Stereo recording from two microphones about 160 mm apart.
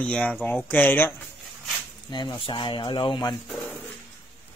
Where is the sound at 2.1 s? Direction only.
30° left (ahead or behind).